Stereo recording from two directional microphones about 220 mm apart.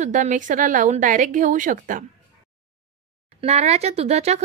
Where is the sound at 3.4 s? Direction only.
30° right (ahead or behind).